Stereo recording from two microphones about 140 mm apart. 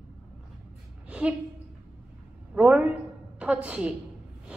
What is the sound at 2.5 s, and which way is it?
A woman's voice, 5° right (ahead or behind).